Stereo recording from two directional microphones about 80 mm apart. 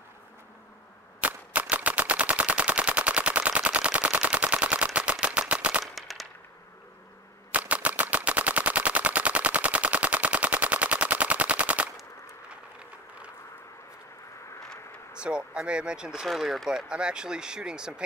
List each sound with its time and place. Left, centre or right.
1.2 s machine gun: centre
5.9 s machine gun: centre
7.5 s machine gun: centre
12.4 s a sound: centre
15.1 s speech: centre